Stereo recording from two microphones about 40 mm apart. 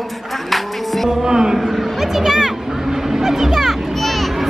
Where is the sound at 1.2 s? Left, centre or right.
Centre.